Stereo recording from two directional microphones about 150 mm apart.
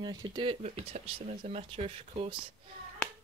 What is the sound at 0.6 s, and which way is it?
Speech, 50° right (ahead or behind).